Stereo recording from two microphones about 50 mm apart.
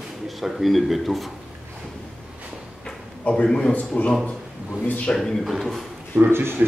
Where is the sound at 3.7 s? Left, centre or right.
Left.